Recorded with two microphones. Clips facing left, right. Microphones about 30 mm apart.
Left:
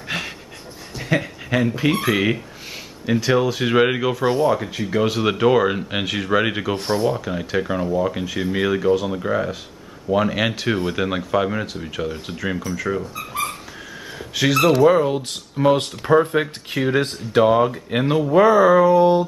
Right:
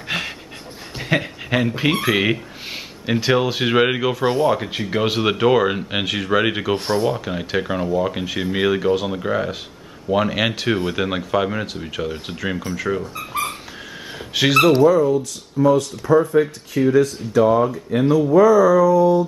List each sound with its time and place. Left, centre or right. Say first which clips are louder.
0.1 s pant: right 2 dB; centre
0.9 s speech: right 1 dB; right
3.7 s speech: even; centre
4.3 s speech: even; centre
14.1 s a sound: right 2 dB; centre
14.8 s speech: right 1 dB; left